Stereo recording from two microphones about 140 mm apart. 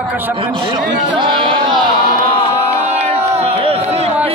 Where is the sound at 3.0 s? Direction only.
50° right (ahead or behind).